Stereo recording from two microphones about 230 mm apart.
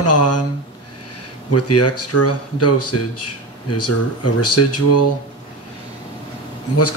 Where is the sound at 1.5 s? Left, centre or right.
Left.